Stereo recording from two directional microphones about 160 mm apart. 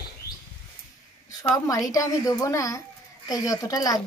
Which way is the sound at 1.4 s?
20° left (ahead or behind).